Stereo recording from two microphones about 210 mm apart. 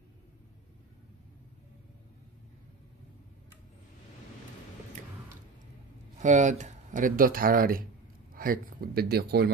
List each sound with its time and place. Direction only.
6.1 s speech: 35° right (ahead or behind)